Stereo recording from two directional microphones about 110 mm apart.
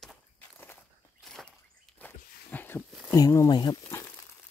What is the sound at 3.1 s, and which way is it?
Speech, 30° left (ahead or behind).